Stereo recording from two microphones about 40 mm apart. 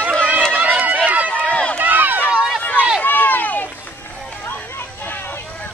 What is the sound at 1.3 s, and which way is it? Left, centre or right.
Run, left.